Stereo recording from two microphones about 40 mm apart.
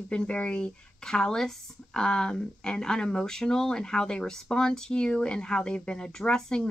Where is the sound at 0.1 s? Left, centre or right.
Left.